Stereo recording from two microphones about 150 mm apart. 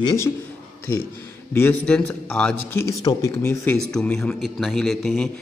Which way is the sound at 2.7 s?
20° left (ahead or behind).